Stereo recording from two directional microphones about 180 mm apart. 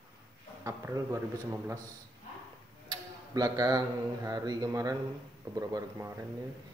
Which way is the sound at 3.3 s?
20° right (ahead or behind).